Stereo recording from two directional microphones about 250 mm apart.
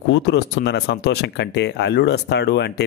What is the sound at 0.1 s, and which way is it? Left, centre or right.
Speech, left.